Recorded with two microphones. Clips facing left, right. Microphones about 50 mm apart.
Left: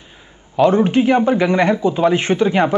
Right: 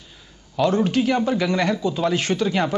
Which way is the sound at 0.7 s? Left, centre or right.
Left.